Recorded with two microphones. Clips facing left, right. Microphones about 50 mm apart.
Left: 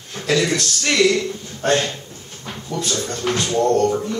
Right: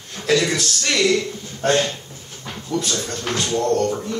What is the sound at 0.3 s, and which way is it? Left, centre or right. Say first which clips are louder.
Speech: even; centre.